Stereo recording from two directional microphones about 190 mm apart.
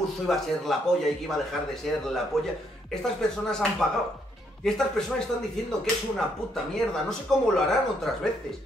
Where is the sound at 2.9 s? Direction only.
5° left (ahead or behind).